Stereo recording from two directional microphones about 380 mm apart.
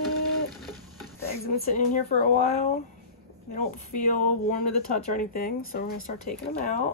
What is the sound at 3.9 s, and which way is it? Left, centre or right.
Speech, left.